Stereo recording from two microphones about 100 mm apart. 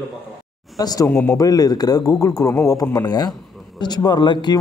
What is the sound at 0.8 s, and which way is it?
Speech, 40° left (ahead or behind).